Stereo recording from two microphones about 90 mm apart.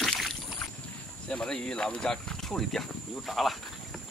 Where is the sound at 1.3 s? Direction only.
10° left (ahead or behind).